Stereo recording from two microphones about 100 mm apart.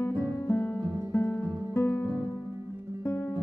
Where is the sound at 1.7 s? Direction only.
25° left (ahead or behind).